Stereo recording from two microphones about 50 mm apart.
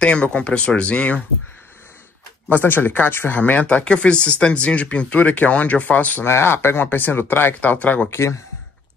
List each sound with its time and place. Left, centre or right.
0.0 s speech: centre
2.5 s speech: left
3.3 s speech: left
6.2 s speech: left
7.6 s speech: left
8.1 s speech: left